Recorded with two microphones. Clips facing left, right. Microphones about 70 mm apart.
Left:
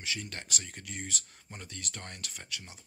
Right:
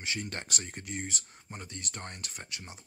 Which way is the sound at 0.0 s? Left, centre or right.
Right.